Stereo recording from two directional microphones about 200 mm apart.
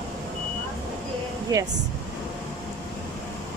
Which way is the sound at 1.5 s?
20° right (ahead or behind).